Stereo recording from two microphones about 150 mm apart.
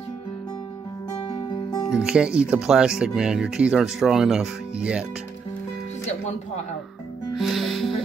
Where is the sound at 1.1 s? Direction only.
35° left (ahead or behind).